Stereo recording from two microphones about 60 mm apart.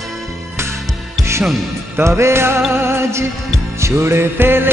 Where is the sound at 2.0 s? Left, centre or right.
Right.